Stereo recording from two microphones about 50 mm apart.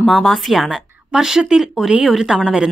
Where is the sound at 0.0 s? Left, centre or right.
Centre.